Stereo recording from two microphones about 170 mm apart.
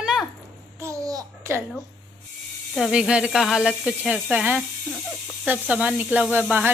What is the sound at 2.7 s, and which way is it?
Speech, centre (ahead or behind).